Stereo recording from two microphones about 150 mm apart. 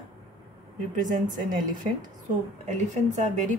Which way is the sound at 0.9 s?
60° right (ahead or behind).